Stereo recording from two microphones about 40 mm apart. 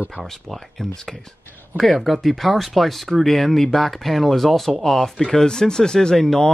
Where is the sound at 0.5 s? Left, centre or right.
Centre.